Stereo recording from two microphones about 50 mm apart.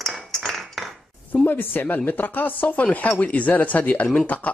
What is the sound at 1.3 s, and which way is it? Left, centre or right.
Speech, left.